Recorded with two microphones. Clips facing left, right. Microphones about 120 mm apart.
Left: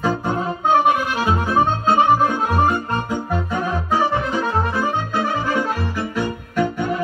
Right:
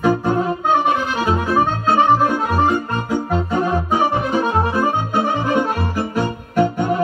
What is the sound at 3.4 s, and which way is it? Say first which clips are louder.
Organ: right 4 dB; 30° right (ahead or behind).